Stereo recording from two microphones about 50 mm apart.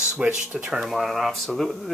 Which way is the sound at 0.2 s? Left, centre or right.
Right.